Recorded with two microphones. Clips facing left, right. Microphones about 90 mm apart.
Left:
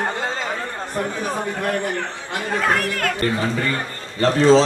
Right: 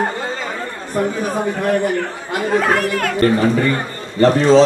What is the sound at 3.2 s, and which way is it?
A man's voice, 30° right (ahead or behind).